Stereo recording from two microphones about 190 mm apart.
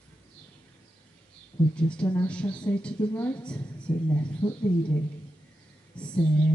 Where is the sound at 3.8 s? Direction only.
25° left (ahead or behind).